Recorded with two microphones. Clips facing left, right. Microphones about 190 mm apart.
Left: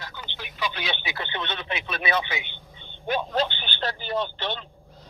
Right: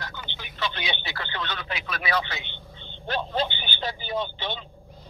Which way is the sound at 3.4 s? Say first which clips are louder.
Left 1 dB; 5° right (ahead or behind).